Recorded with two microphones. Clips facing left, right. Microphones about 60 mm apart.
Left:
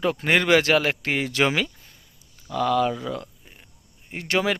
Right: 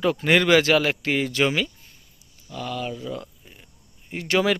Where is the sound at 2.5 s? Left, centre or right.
Left.